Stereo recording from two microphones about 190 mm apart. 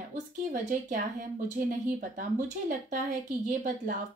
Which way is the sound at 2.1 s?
40° right (ahead or behind).